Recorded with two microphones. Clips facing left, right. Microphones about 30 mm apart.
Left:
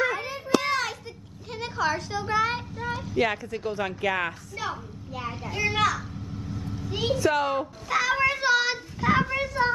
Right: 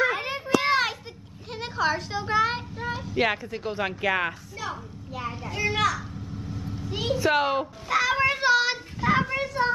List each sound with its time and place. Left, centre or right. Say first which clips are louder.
0.1 s child singing: right 1 dB; right
1.5 s a child's voice: right 1 dB; centre
4.6 s a woman's voice: left 1 dB; centre
5.1 s a child's voice: even; centre
6.7 s vehicle: left 1 dB; centre
7.2 s speech: right 2 dB; right
7.9 s a child's voice: right 1 dB; centre